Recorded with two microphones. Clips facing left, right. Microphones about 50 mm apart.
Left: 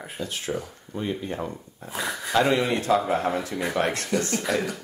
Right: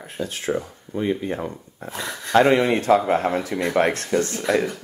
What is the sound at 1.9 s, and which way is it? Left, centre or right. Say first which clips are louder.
Speech: left 1 dB; centre.